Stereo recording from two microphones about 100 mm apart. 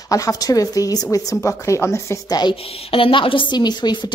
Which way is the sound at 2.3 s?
45° left (ahead or behind).